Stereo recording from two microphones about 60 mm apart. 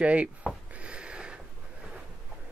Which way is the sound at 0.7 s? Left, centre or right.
Centre.